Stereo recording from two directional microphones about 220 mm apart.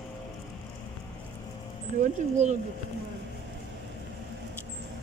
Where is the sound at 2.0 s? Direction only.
30° right (ahead or behind).